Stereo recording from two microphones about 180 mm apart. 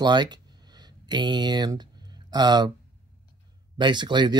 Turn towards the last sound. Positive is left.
turn(degrees=-25)  # may be behind; listen again after turning